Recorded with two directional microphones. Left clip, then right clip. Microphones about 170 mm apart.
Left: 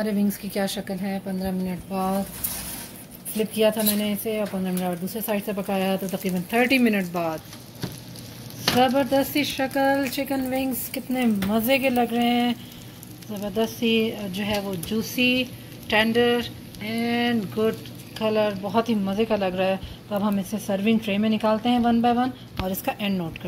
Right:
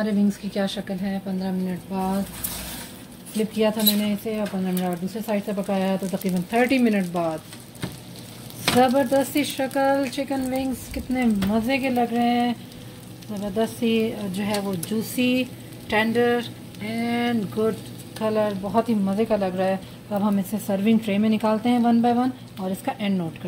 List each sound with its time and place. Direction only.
0.0 s speech: 10° left (ahead or behind)
3.3 s speech: 15° left (ahead or behind); by 7.3 s centre (ahead or behind)
8.7 s speech: 10° right (ahead or behind)